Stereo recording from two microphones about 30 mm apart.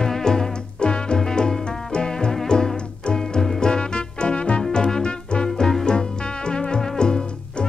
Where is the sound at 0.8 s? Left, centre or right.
Left.